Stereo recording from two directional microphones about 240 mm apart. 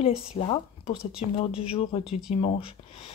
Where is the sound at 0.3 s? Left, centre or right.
Left.